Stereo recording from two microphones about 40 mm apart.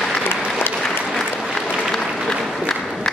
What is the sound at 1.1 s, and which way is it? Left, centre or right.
Applause, centre.